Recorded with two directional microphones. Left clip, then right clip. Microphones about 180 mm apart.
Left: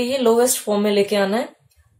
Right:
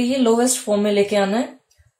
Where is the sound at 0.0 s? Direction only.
40° left (ahead or behind).